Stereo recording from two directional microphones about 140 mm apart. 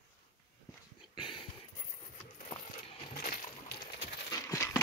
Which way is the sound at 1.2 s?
40° left (ahead or behind).